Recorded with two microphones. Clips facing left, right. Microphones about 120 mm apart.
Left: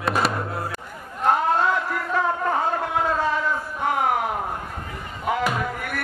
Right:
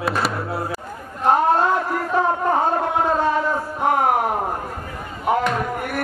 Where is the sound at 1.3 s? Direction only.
40° right (ahead or behind).